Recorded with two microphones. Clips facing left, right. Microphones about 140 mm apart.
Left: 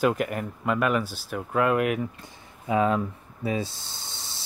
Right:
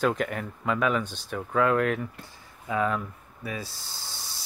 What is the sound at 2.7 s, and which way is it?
Speech, 20° left (ahead or behind).